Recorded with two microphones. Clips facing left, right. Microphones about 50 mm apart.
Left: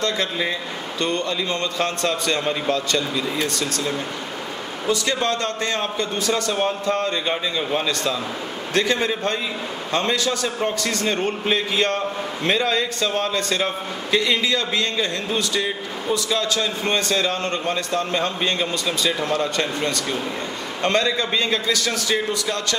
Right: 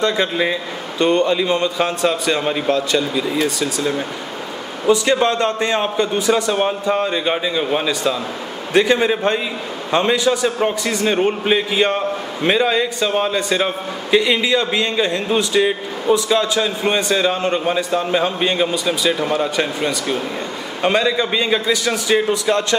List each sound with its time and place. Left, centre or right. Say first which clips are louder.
0.0 s a man's voice: right 5 dB; centre